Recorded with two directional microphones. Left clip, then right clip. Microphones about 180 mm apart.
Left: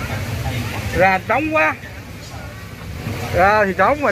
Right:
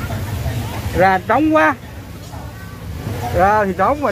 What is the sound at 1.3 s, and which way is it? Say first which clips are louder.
Speech: right 3 dB; 35° right (ahead or behind).